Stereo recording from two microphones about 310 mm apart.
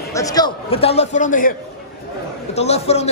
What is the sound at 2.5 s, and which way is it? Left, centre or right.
Speech, centre.